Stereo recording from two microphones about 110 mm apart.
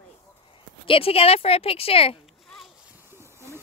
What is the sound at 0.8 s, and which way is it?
Speech, 60° left (ahead or behind).